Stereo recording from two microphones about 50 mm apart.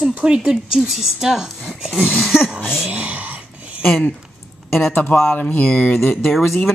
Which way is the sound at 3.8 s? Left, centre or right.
Left.